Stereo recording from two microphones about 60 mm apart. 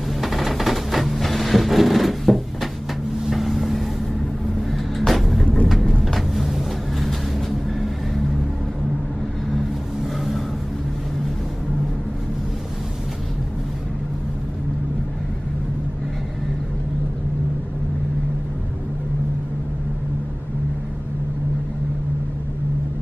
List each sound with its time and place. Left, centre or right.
0.2 s a sound: centre
3.3 s vehicle: centre
5.9 s vehicle: centre
6.1 s vehicle: centre